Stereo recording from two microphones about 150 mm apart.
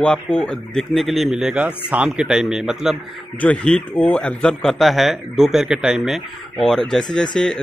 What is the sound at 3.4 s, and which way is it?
A man's voice, 10° left (ahead or behind).